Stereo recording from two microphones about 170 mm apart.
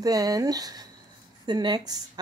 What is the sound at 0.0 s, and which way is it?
A woman's voice, 20° right (ahead or behind).